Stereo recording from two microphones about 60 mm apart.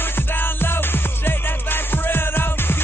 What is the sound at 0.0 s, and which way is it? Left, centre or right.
Music, left.